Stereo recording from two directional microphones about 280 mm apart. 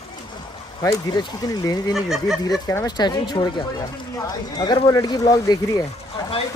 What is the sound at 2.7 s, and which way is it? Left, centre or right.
Speech, centre.